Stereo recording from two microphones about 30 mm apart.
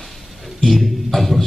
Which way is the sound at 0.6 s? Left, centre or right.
Centre.